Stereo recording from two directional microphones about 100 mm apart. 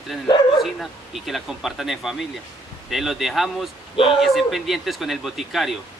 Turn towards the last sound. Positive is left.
turn(degrees=0)  # may be behind; listen again after turning